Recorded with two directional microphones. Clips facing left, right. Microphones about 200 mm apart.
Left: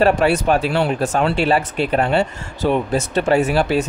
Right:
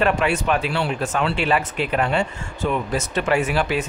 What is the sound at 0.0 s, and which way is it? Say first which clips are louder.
A man's voice: left 5 dB; 35° left (ahead or behind).